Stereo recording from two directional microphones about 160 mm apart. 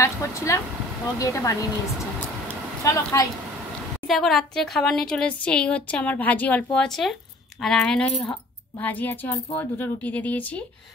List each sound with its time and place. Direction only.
0.0 s speech: 20° left (ahead or behind)
2.4 s a sound: 20° left (ahead or behind)
4.1 s a woman's voice: centre (ahead or behind)